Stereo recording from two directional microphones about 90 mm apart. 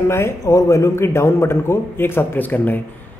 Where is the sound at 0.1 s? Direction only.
35° left (ahead or behind).